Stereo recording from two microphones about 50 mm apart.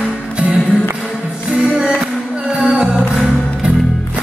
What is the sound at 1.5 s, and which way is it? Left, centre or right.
Music, centre.